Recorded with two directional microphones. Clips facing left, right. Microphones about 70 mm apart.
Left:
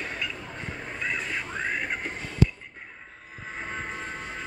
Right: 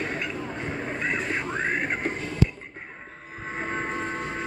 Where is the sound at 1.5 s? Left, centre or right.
Right.